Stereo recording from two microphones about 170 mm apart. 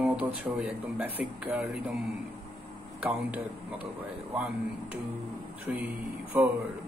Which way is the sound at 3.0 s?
10° right (ahead or behind).